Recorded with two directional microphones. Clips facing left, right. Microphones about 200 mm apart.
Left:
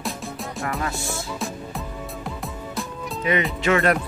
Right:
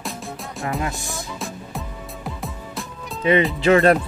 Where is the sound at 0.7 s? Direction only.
15° right (ahead or behind).